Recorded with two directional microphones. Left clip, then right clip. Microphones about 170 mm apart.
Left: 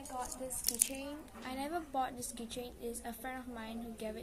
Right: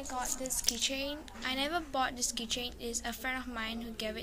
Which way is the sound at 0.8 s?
20° right (ahead or behind).